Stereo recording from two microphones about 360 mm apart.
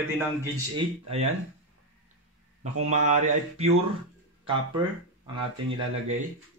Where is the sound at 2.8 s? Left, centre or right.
Centre.